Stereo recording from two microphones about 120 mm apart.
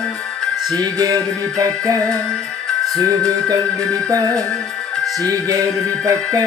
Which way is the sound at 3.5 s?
30° right (ahead or behind).